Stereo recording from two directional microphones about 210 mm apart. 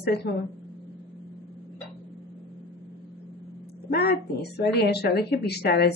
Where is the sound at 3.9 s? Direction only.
50° left (ahead or behind).